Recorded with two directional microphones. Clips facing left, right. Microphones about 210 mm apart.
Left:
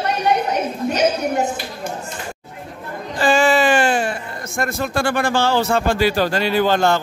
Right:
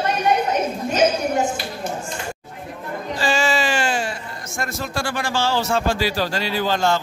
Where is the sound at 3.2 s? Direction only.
55° left (ahead or behind).